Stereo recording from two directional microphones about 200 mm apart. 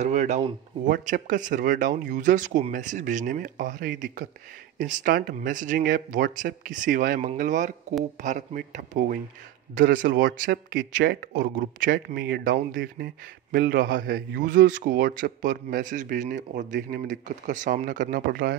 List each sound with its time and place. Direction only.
0.0 s speech: 35° right (ahead or behind)